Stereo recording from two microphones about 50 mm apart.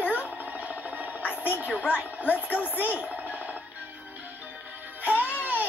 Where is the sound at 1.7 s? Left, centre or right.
Left.